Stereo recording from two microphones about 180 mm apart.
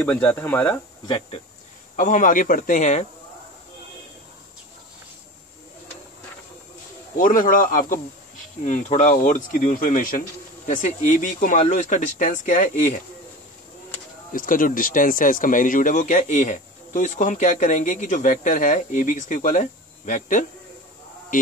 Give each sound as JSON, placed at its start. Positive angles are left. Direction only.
{"t": 0.0, "sound": "speech", "side_deg": 10}
{"t": 1.0, "sound": "speech", "side_deg": 25}
{"t": 2.0, "sound": "speech", "side_deg": 45}
{"t": 7.2, "sound": "speech", "side_deg": 50}
{"t": 14.3, "sound": "speech", "side_deg": 50}